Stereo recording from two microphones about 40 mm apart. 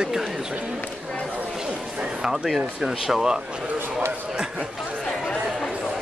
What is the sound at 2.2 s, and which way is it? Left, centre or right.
Speech, centre.